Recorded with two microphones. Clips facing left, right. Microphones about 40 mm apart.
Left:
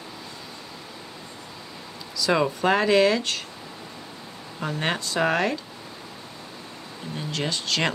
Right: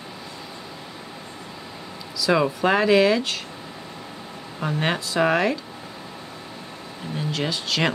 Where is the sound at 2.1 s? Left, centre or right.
Centre.